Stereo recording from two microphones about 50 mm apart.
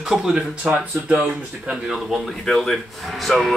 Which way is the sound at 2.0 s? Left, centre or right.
Centre.